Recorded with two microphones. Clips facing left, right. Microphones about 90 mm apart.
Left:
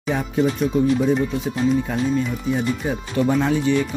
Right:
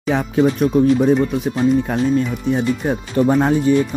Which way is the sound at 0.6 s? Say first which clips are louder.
Right 4 dB; 65° right (ahead or behind).